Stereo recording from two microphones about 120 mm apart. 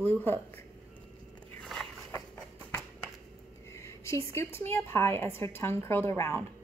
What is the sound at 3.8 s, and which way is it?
A woman's voice, 25° left (ahead or behind).